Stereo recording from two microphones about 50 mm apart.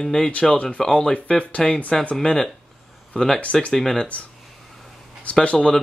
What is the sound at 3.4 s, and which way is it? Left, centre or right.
Speech, left.